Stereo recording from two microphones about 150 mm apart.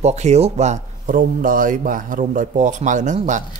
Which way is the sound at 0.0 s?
50° right (ahead or behind).